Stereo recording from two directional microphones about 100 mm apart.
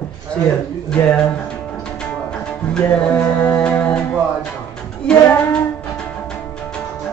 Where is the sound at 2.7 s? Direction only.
10° left (ahead or behind).